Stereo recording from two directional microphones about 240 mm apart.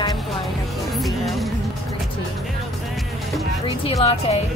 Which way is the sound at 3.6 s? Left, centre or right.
Left.